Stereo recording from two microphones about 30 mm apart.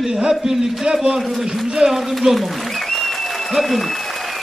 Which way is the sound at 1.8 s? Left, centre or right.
Right.